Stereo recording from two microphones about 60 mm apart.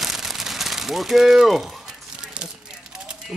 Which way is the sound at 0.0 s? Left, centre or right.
Centre.